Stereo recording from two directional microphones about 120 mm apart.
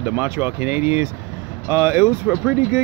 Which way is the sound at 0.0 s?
15° right (ahead or behind).